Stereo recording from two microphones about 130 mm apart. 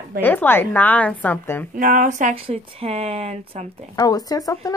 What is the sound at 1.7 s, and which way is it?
Speech, 90° right.